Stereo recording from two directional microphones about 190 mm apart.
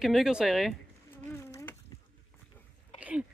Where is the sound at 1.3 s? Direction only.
15° left (ahead or behind).